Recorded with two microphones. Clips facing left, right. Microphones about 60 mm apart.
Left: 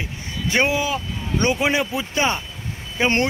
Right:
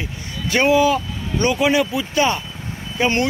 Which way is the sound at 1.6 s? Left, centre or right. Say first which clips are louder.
Right 3 dB; left.